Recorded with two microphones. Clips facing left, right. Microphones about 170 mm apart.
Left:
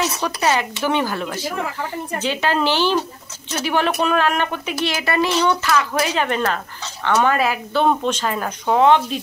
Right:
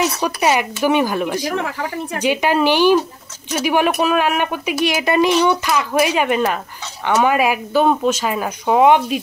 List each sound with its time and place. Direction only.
0.2 s speech: 15° right (ahead or behind)
1.5 s a woman's voice: 75° right (ahead or behind)
2.1 s speech: 15° right (ahead or behind)